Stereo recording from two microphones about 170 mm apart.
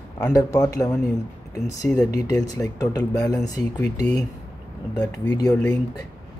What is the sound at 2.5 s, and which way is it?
Speech, 20° left (ahead or behind).